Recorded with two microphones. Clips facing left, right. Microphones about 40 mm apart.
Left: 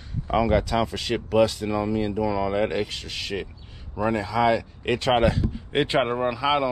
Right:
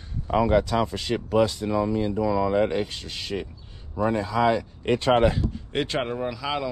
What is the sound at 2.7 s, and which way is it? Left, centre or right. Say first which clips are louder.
Speech: even; left.